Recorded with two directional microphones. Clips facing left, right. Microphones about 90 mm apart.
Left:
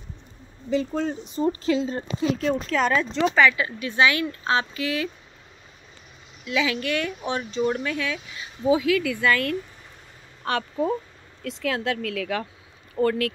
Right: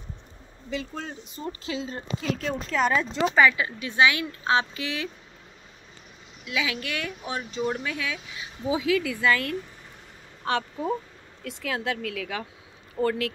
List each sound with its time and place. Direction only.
0.7 s speech: 35° left (ahead or behind)
2.4 s speech: 5° right (ahead or behind); by 5.1 s 20° right (ahead or behind)
6.4 s speech: 10° right (ahead or behind)
8.7 s a woman's voice: 25° right (ahead or behind)